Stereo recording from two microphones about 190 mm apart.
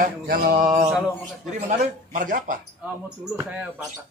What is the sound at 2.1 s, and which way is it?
Speech, 40° right (ahead or behind).